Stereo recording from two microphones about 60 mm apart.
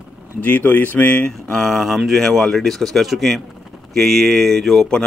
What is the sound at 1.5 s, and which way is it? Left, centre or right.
Speech, centre.